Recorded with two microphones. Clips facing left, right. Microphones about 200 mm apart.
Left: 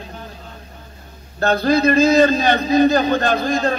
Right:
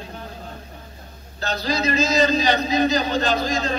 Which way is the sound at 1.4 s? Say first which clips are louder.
Left 9 dB; 55° left (ahead or behind).